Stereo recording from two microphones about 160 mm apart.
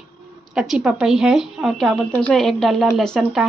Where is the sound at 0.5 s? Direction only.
Centre (ahead or behind).